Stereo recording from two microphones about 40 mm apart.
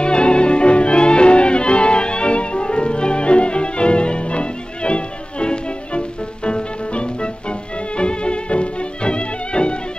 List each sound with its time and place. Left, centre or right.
0.0 s music: left